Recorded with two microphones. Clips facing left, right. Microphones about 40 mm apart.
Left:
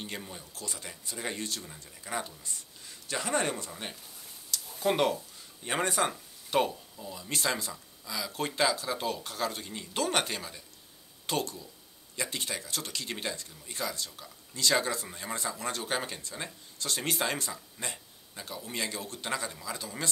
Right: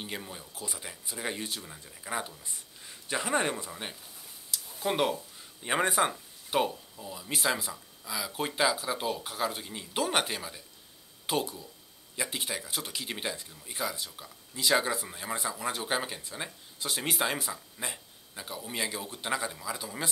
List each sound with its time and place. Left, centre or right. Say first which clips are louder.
0.0 s speech: right 1 dB; centre
2.8 s speech: right 2 dB; right
4.5 s a sound: left 3 dB; centre
5.6 s speech: right 2 dB; centre